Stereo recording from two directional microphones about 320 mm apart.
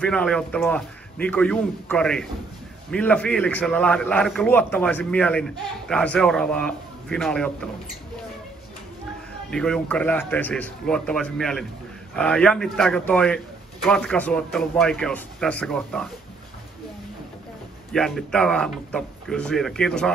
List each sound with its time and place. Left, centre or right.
0.0 s a man's voice: centre
9.5 s a man's voice: centre
17.9 s a man's voice: centre